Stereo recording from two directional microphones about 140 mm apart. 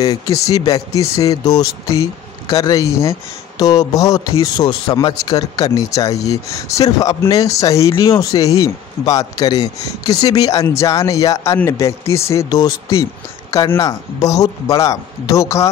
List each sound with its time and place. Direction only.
0.0 s speech: 25° left (ahead or behind)